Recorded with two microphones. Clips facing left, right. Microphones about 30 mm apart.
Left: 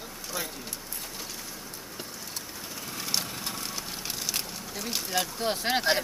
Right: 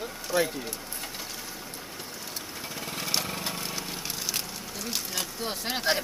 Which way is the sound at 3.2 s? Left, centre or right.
Right.